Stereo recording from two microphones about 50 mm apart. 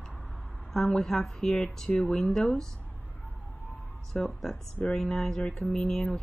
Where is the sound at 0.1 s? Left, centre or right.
Left.